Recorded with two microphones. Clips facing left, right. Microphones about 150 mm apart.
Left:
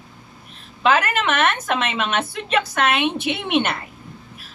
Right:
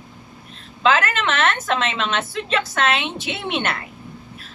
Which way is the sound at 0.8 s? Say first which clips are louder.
Even; 15° left (ahead or behind).